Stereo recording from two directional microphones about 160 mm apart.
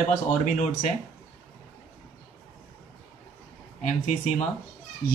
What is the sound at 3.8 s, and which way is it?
Speech, 50° left (ahead or behind).